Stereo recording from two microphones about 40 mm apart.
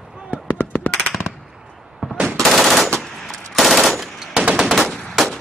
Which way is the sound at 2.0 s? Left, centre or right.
Right.